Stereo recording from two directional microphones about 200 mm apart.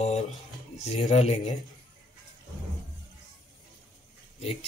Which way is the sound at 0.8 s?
35° left (ahead or behind).